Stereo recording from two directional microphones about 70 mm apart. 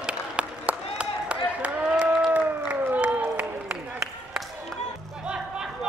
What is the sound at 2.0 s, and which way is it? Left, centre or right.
Applause, centre.